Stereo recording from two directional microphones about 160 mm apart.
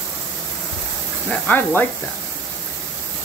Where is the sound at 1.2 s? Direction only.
10° left (ahead or behind).